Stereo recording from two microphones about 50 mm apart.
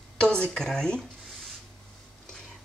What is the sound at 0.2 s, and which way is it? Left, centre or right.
Speech, centre.